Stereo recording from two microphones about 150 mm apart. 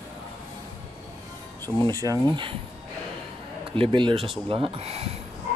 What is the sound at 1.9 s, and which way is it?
Speech, 25° right (ahead or behind).